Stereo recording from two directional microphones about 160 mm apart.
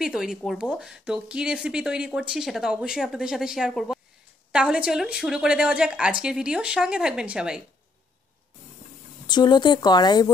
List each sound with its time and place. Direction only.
0.0 s speech: 5° right (ahead or behind)
9.3 s speech: 25° left (ahead or behind)